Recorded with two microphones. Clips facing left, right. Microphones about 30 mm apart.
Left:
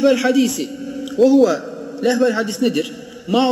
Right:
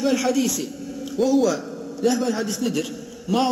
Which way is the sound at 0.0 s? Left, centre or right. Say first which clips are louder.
Left 6 dB; left.